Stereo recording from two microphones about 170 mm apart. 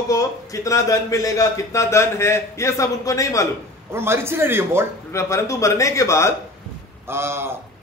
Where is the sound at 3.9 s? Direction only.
15° right (ahead or behind).